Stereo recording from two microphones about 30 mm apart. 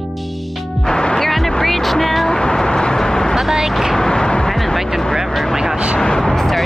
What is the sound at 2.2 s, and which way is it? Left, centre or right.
Vehicle, left.